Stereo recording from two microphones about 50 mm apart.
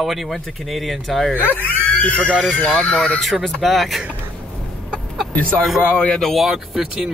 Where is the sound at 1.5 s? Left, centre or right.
Left.